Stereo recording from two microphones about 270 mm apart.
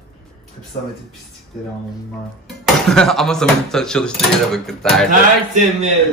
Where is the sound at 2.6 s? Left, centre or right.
Centre.